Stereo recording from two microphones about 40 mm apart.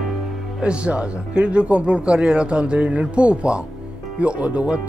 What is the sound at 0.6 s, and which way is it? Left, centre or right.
Speech, right.